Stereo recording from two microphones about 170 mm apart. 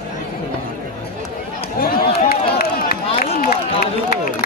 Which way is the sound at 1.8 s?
60° left (ahead or behind).